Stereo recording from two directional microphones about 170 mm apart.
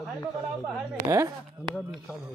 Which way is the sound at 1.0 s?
15° right (ahead or behind).